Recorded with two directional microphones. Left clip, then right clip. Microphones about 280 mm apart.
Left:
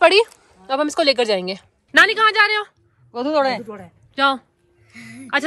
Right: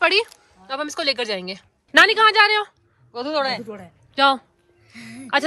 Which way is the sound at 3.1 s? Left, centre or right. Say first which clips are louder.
Left 4 dB; left.